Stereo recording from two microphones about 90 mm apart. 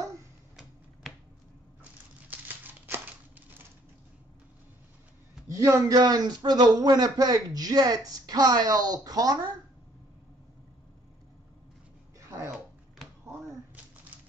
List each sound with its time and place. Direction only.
1.8 s crumpling: 20° right (ahead or behind)
5.5 s speech: 35° right (ahead or behind)